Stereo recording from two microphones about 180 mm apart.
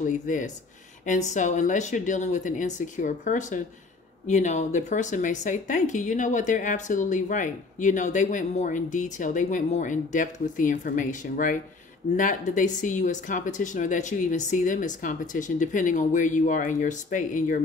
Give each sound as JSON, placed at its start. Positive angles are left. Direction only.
{"t": 0.0, "sound": "speech", "side_deg": 45}